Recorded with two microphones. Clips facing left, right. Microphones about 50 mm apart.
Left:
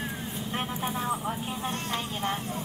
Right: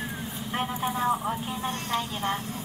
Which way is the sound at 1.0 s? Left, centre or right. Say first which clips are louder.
Right 6 dB; centre.